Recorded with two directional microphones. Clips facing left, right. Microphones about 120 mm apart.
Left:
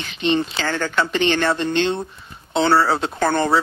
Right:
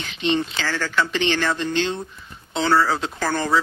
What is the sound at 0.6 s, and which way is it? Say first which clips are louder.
Speech: left 2 dB; 50° left (ahead or behind).